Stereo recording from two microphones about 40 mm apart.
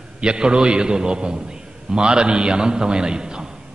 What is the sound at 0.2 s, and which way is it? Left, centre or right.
A man's voice, right.